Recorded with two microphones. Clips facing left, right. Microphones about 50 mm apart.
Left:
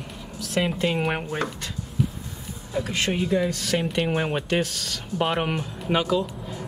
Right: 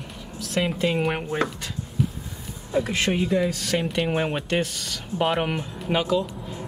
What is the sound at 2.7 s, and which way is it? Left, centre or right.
Speech, centre.